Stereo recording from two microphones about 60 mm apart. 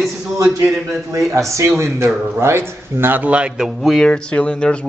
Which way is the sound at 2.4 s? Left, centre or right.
Right.